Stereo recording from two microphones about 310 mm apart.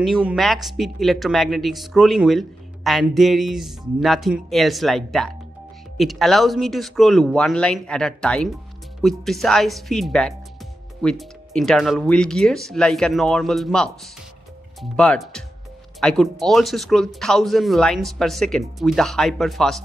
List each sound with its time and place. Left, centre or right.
0.0 s speech: centre